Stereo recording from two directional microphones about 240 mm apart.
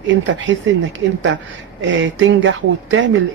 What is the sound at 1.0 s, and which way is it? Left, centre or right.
A woman's voice, right.